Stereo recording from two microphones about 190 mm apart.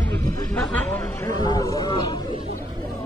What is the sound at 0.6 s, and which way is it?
Chatter, 10° left (ahead or behind).